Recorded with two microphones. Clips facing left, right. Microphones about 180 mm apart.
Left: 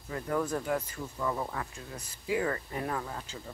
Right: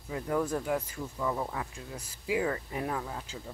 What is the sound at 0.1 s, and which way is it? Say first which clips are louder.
Speech: right 1 dB; 10° right (ahead or behind).